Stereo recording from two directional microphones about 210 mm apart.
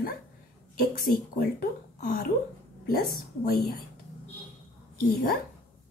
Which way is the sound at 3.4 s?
45° left (ahead or behind).